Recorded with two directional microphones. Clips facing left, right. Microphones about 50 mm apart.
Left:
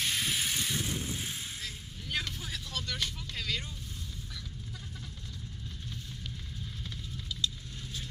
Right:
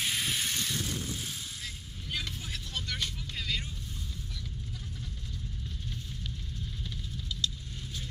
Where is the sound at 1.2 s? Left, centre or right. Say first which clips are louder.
Left 1 dB; left.